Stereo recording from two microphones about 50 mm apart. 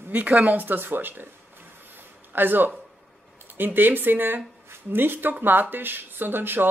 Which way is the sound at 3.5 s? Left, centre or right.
Right.